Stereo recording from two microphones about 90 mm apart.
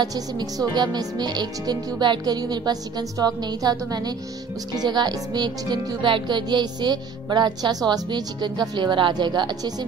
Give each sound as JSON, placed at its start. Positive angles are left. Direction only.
{"t": 0.0, "sound": "music", "side_deg": -45}